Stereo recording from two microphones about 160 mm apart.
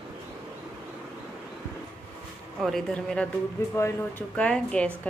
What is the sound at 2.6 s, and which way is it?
A woman's voice, centre (ahead or behind).